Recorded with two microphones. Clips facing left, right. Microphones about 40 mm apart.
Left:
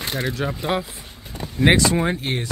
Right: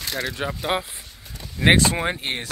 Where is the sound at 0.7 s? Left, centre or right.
Centre.